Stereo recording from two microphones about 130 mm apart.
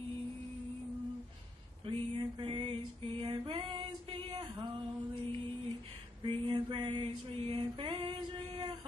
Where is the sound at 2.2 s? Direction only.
35° right (ahead or behind).